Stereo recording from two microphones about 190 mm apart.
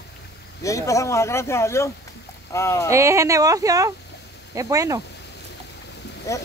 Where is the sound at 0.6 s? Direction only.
15° left (ahead or behind).